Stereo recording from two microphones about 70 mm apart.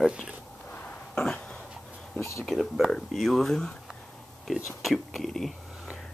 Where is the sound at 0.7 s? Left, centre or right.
Centre.